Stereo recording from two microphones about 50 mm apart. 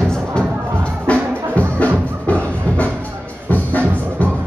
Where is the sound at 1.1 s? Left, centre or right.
Left.